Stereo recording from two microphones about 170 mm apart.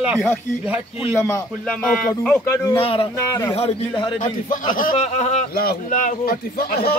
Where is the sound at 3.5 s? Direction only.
35° left (ahead or behind).